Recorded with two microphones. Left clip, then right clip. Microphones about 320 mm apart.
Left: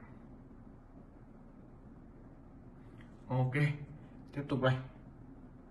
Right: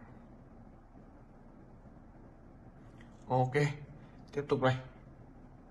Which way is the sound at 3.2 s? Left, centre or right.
Centre.